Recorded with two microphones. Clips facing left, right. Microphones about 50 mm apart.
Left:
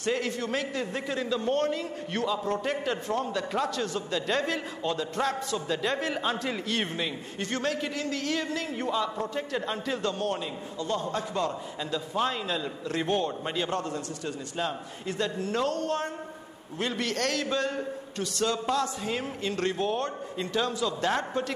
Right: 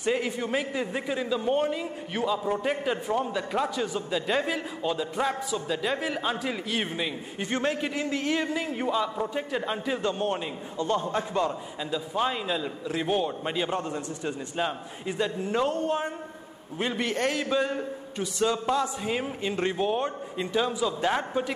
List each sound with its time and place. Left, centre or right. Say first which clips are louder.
0.0 s a man's voice: right 2 dB; centre
7.4 s a man's voice: right 2 dB; right
11.9 s a man's voice: right 1 dB; centre